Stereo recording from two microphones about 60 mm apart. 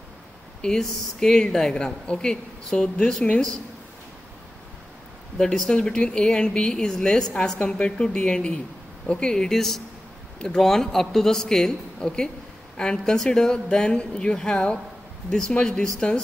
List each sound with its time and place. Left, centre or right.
0.6 s speech: centre
5.4 s speech: centre